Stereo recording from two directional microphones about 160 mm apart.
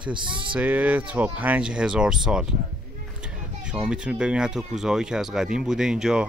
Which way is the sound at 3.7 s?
5° right (ahead or behind).